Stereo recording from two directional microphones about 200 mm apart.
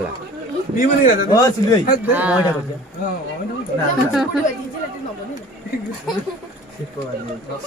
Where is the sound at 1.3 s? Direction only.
20° left (ahead or behind).